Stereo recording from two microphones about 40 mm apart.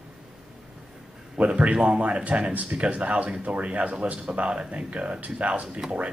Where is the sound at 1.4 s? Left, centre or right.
Right.